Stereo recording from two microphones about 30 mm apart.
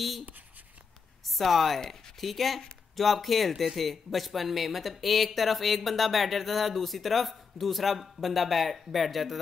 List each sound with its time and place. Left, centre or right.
1.2 s speech: centre